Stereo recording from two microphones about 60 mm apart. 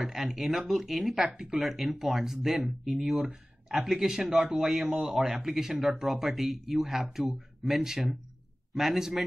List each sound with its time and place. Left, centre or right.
0.0 s a man's voice: centre
3.3 s a sound: centre
3.8 s a man's voice: centre